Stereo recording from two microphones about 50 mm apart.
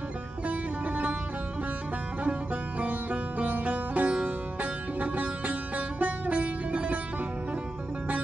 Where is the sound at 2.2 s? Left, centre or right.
Right.